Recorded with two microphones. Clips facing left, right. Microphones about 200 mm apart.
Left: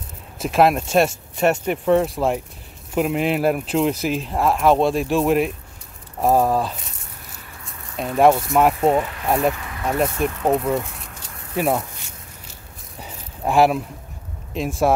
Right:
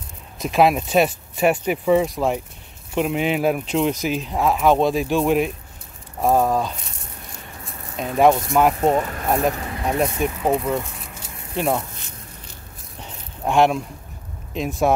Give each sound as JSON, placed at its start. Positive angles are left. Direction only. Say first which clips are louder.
{"t": 0.4, "sound": "speech", "louder": "even", "side_deg": 0}
{"t": 8.0, "sound": "speech", "louder": "left 1 dB", "side_deg": 0}
{"t": 8.8, "sound": "speech", "louder": "left 1 dB", "side_deg": -40}
{"t": 9.9, "sound": "speech", "louder": "left 1 dB", "side_deg": 0}
{"t": 13.0, "sound": "a sound", "louder": "left 1 dB", "side_deg": 5}
{"t": 14.5, "sound": "speech", "louder": "left 1 dB", "side_deg": 0}